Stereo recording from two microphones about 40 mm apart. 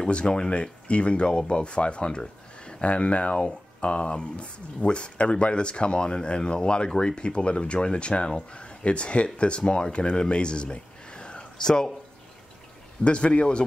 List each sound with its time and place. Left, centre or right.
0.1 s speech: left
13.0 s speech: left